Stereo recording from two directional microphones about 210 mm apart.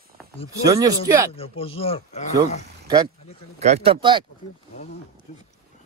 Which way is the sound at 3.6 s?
30° right (ahead or behind).